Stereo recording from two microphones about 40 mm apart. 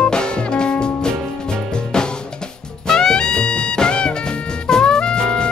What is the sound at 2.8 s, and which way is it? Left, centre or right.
Music, centre.